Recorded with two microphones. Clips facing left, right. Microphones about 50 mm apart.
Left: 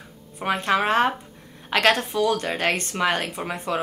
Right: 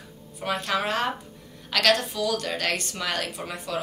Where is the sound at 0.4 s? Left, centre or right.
Left.